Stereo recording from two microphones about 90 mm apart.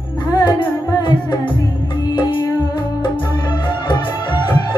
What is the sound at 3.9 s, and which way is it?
Music, 55° left (ahead or behind).